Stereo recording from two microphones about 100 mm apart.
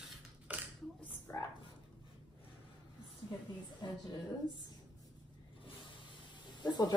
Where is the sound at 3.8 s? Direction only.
45° left (ahead or behind).